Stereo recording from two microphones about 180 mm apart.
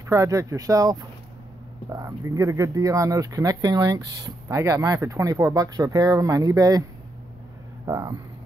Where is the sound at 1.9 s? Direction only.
20° right (ahead or behind).